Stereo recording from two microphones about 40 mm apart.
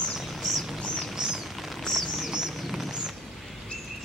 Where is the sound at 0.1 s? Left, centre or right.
Centre.